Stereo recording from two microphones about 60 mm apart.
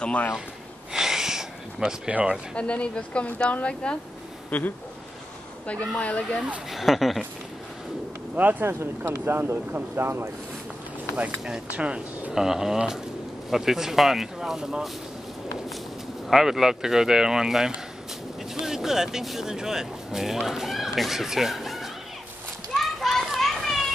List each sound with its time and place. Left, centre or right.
0.0 s a woman's voice: left
0.9 s a sound: centre
2.0 s speech: centre
2.5 s a woman's voice: centre
5.9 s a woman's voice: left
6.7 s speech: centre
8.4 s speech: right
8.6 s speech: right
11.7 s speech: centre
12.4 s speech: centre
16.3 s speech: centre
22.8 s children playing: centre